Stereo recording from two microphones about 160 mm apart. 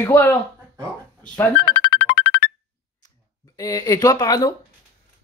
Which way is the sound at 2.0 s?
75° left (ahead or behind).